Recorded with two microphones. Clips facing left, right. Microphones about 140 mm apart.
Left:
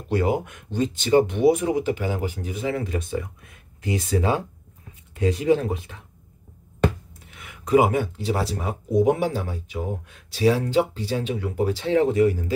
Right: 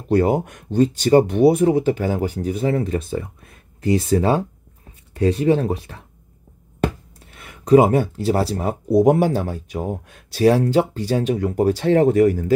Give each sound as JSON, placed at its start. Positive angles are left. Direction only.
{"t": 0.1, "sound": "speech", "side_deg": -40}
{"t": 7.2, "sound": "speech", "side_deg": -35}